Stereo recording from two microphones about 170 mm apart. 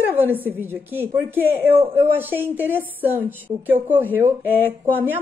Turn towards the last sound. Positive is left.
turn(degrees=-10)  # may be behind; listen again after turning